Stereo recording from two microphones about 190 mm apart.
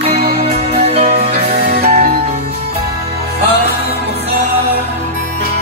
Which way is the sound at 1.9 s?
50° right (ahead or behind).